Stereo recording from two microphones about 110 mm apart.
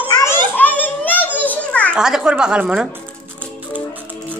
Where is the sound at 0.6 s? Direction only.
15° left (ahead or behind).